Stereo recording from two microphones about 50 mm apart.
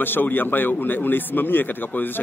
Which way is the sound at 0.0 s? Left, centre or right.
Left.